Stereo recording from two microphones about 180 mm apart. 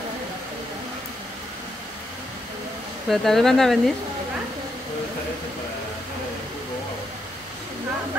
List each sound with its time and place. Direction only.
3.1 s speech: centre (ahead or behind)